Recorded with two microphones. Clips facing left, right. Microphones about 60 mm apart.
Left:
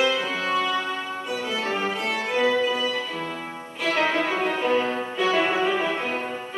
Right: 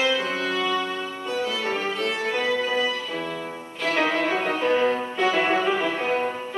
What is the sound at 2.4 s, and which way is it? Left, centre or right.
Music, centre.